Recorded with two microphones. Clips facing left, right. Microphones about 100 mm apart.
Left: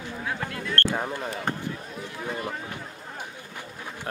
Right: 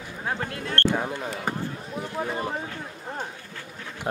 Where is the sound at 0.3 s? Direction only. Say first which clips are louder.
Right 2 dB; 35° right (ahead or behind).